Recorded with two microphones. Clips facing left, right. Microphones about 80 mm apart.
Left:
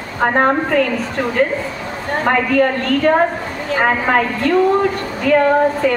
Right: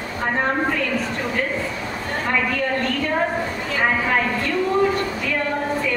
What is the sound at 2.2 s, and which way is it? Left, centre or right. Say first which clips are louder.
A woman's voice: left 8 dB; left.